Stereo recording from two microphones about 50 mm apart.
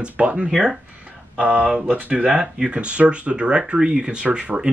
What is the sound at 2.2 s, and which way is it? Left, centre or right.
Speech, centre.